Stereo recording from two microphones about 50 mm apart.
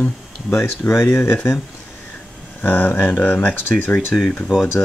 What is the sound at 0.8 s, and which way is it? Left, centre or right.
Speech, left.